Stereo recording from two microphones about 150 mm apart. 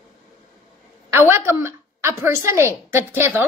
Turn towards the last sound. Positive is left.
turn(degrees=-15)  # may be behind; listen again after turning